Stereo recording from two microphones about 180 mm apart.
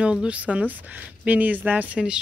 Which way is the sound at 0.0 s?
5° right (ahead or behind).